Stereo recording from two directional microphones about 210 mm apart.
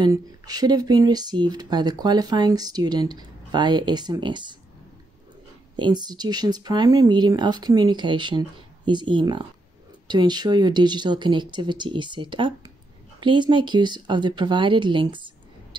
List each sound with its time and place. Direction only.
0.0 s speech: 20° right (ahead or behind)
5.8 s speech: 20° right (ahead or behind)